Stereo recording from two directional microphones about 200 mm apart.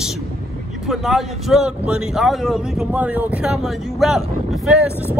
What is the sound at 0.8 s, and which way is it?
Speech, centre (ahead or behind).